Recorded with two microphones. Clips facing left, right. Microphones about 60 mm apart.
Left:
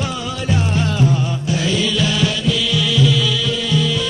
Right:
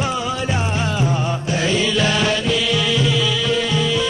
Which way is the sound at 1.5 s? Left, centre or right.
Right.